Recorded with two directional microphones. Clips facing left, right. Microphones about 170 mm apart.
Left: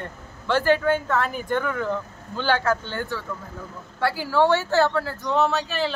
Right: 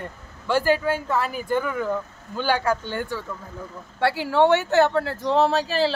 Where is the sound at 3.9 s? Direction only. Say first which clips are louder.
Right 1 dB; 25° right (ahead or behind).